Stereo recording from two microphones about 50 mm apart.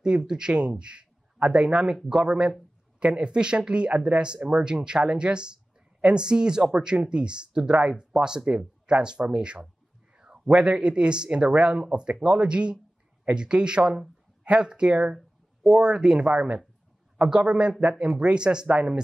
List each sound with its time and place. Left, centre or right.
0.0 s a man's voice: centre
10.1 s a sound: centre
10.5 s speech: centre